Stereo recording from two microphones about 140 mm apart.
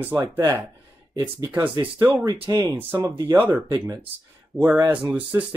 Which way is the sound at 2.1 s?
25° right (ahead or behind).